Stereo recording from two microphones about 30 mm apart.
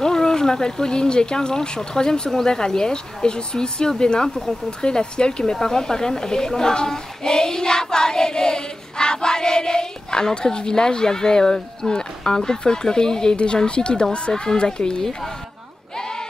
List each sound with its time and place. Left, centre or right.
0.0 s speech: centre
2.0 s child singing: left
4.6 s speech: left
5.6 s child singing: centre
13.7 s speech: left
14.3 s child singing: centre
14.6 s child singing: left